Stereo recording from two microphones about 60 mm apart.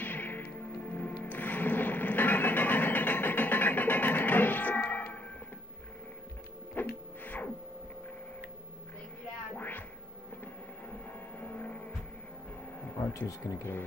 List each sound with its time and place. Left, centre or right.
0.0 s music: left
6.7 s a sound: left
9.6 s music: left
10.4 s vehicle: left
12.8 s a sound: left
13.4 s speech: left